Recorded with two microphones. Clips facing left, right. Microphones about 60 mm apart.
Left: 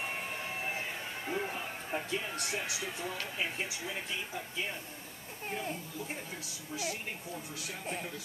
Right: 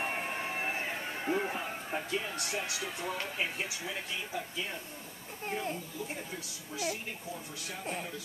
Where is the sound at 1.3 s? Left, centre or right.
Centre.